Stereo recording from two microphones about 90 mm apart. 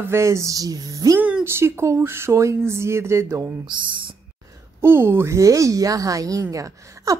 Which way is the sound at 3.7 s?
65° right (ahead or behind).